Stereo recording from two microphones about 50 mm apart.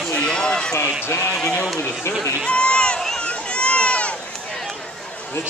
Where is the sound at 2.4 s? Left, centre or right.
Left.